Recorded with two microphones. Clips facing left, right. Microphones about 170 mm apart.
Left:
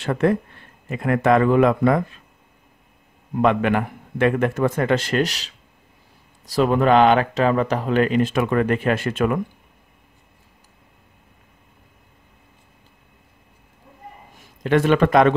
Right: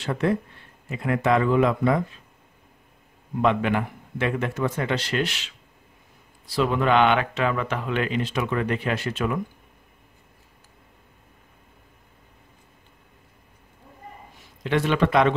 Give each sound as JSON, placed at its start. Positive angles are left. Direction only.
{"t": 0.0, "sound": "speech", "side_deg": 55}
{"t": 3.4, "sound": "speech", "side_deg": 55}
{"t": 14.6, "sound": "speech", "side_deg": 50}